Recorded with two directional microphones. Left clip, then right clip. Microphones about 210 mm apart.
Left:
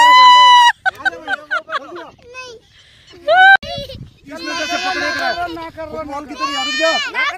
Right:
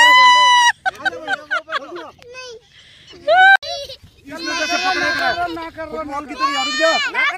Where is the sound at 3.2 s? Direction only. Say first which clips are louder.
Left 2 dB; 15° left (ahead or behind).